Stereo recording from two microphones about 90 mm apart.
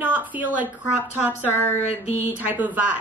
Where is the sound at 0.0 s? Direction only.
20° right (ahead or behind).